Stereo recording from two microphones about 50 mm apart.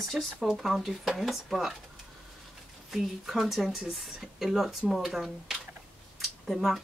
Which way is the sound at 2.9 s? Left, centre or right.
Centre.